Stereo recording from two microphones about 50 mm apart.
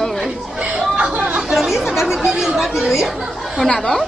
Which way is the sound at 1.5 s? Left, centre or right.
Centre.